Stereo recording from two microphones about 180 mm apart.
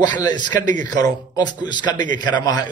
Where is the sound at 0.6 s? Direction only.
45° right (ahead or behind).